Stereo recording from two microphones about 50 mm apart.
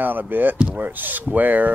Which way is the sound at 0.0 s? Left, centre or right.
Right.